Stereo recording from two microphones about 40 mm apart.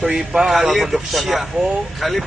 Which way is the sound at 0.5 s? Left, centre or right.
Centre.